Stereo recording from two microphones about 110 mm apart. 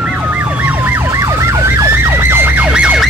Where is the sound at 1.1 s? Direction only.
25° right (ahead or behind).